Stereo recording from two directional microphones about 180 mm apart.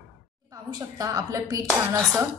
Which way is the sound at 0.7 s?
20° right (ahead or behind).